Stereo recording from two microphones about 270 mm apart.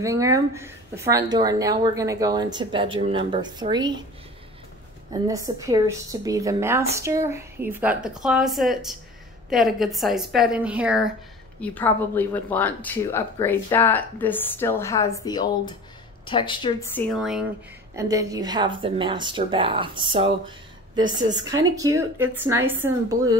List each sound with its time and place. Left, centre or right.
0.0 s speech: centre
5.1 s a woman's voice: centre
16.9 s a woman's voice: centre
17.9 s speech: centre